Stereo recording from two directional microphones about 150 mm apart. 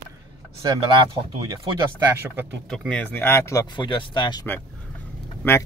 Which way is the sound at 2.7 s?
5° left (ahead or behind).